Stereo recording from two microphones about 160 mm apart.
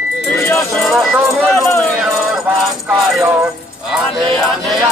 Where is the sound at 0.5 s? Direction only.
Centre (ahead or behind).